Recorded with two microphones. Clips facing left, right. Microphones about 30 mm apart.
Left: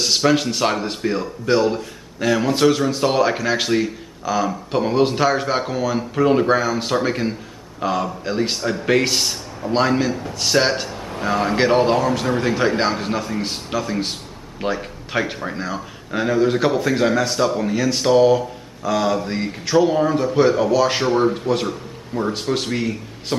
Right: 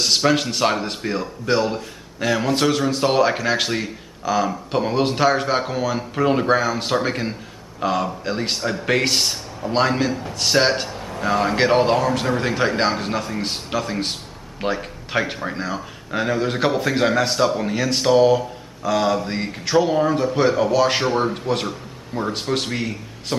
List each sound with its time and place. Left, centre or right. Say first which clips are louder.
0.0 s speech: left 1 dB; centre